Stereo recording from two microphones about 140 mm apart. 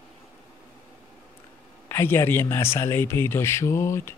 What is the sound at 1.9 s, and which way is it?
Speech, 15° left (ahead or behind).